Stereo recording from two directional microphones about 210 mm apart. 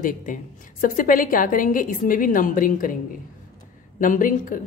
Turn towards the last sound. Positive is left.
turn(degrees=40)  # may be behind; listen again after turning